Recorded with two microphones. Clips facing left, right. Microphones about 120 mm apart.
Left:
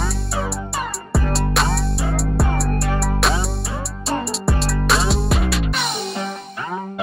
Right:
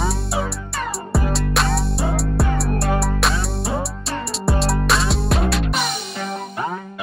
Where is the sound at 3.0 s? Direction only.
Centre (ahead or behind).